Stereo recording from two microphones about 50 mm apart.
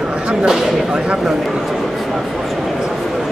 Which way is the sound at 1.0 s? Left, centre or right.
Centre.